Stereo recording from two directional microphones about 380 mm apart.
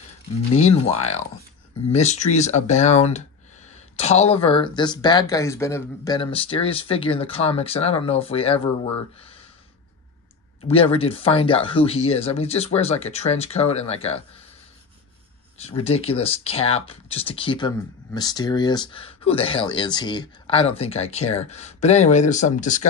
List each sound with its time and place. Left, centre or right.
0.6 s speech: centre
10.7 s speech: centre
15.6 s speech: centre